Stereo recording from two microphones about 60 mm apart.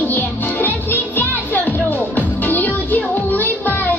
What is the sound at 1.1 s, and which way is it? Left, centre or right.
Music, left.